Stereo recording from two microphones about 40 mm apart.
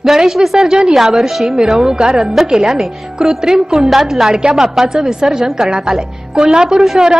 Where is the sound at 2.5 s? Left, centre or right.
Centre.